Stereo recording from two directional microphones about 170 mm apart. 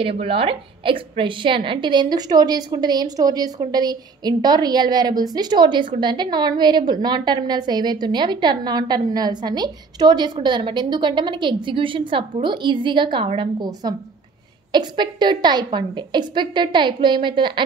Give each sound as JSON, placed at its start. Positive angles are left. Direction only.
{"t": 0.2, "sound": "a woman's voice", "side_deg": -35}